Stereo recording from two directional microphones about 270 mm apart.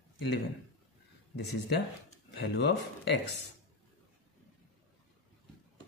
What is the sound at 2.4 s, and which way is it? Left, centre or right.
Speech, left.